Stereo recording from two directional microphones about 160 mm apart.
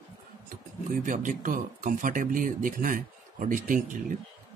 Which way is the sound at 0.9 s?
55° right (ahead or behind).